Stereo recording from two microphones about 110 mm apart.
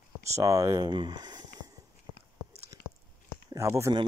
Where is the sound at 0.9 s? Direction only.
40° right (ahead or behind).